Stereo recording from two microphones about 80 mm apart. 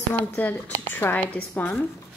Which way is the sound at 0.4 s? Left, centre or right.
Left.